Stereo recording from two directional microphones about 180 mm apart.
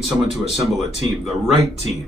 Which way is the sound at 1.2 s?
35° left (ahead or behind).